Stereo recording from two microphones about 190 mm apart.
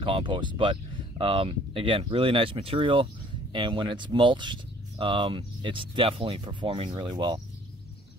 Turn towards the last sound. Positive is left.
turn(degrees=-25)  # may be behind; listen again after turning